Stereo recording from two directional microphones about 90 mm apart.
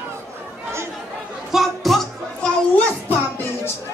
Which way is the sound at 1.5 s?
Centre (ahead or behind).